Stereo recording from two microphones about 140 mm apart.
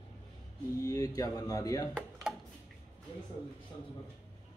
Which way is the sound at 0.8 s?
25° left (ahead or behind).